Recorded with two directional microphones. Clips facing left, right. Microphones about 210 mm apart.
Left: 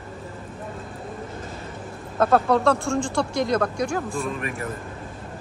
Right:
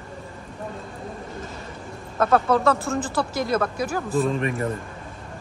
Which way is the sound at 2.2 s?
Centre (ahead or behind).